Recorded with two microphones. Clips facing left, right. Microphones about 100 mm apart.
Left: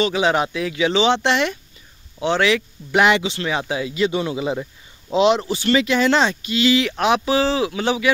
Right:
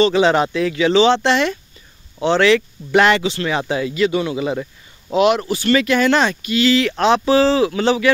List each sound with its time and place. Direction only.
0.0 s speech: 10° left (ahead or behind)
3.9 s speech: 25° left (ahead or behind)